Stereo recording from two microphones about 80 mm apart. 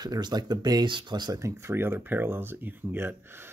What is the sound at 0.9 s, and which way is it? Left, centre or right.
Speech, right.